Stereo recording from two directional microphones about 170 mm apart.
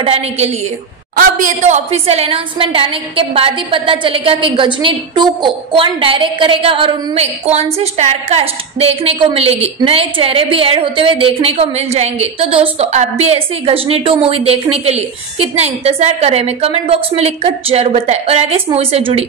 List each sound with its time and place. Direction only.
0.0 s a woman's voice: 35° right (ahead or behind)
1.1 s a woman's voice: 50° right (ahead or behind)